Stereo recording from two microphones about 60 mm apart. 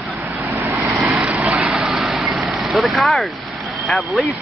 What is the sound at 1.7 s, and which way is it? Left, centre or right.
Vehicle, centre.